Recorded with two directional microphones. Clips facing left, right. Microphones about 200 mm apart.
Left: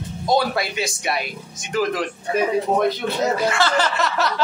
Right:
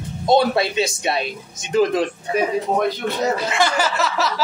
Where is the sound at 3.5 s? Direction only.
15° right (ahead or behind).